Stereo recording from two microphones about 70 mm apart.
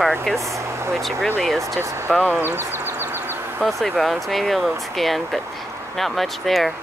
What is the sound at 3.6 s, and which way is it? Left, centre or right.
Speech, centre.